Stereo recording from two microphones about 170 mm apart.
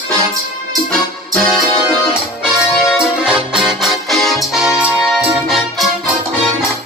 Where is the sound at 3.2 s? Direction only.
5° right (ahead or behind).